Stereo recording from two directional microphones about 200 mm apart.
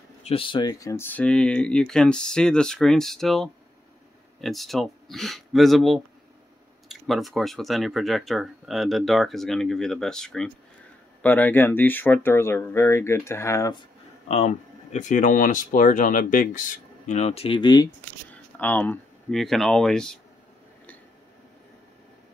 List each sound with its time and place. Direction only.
0.2 s speech: 25° left (ahead or behind)
14.2 s speech: 35° left (ahead or behind)
18.3 s speech: 10° left (ahead or behind)